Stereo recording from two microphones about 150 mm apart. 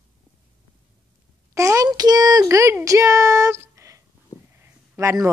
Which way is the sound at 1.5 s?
20° right (ahead or behind).